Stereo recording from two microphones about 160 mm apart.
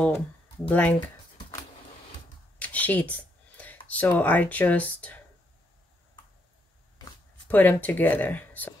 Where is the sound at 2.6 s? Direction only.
10° left (ahead or behind).